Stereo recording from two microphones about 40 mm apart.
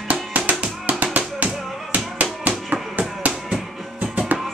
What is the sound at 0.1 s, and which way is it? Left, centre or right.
Music, right.